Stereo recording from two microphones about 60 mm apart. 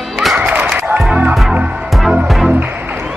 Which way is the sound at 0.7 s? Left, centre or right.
Right.